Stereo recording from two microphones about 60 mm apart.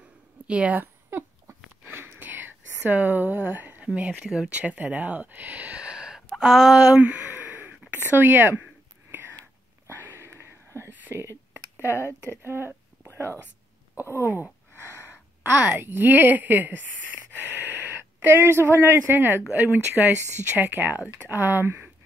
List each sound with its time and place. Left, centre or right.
0.5 s a woman's voice: right
1.9 s whispering: right
3.8 s speech: centre
7.0 s a sound: right
8.1 s speech: right
9.8 s a sound: right
10.9 s a sound: right
12.0 s speech: left
12.4 s a sound: right
14.0 s speech: right
15.0 s sigh: right
15.8 s speech: right